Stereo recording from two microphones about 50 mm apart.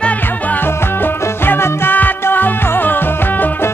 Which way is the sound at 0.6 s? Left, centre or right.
Left.